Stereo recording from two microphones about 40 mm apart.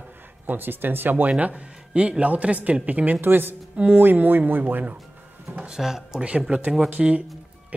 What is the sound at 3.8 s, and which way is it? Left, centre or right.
Speech, right.